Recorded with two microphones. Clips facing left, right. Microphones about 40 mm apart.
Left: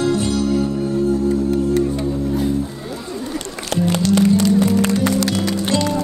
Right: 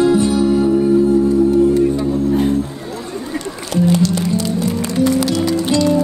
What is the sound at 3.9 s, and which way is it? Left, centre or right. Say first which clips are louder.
Music: left 2 dB; left.